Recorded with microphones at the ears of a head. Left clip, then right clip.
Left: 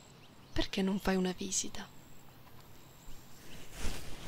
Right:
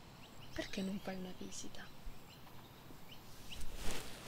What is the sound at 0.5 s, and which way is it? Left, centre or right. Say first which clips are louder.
Speech: left 9 dB; left.